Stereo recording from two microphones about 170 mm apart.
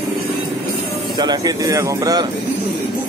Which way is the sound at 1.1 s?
25° right (ahead or behind).